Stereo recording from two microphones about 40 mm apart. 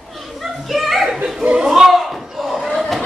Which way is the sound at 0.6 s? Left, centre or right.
Centre.